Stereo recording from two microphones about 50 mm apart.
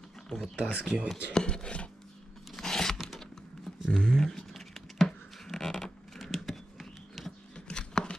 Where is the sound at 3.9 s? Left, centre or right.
Centre.